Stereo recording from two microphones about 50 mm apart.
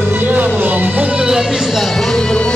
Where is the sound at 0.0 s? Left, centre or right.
Right.